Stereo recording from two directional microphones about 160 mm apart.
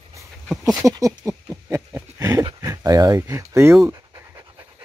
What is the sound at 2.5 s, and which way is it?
Pant, 25° right (ahead or behind).